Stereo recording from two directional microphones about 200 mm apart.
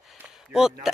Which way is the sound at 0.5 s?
5° right (ahead or behind).